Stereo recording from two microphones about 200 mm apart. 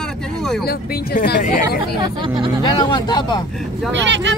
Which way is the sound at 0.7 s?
45° left (ahead or behind).